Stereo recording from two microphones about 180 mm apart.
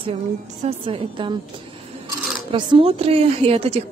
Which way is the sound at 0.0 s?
35° right (ahead or behind).